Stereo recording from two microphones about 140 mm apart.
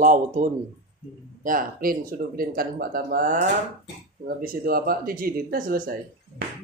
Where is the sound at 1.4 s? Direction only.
85° right.